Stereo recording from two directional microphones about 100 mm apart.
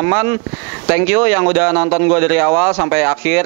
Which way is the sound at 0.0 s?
15° right (ahead or behind).